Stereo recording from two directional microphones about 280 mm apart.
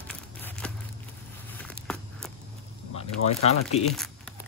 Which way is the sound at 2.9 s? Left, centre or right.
Left.